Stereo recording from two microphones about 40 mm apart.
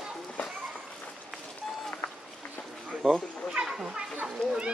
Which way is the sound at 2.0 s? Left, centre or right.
Left.